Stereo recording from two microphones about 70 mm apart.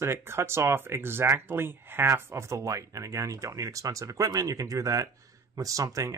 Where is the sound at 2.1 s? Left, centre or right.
Right.